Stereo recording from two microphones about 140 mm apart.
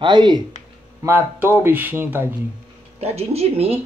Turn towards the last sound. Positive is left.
turn(degrees=-45)  # may be behind; listen again after turning